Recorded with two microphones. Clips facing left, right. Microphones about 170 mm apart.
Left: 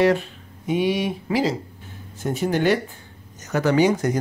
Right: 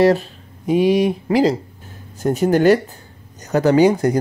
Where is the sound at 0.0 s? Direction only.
35° right (ahead or behind).